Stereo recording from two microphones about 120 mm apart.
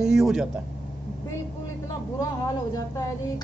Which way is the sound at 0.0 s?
5° right (ahead or behind).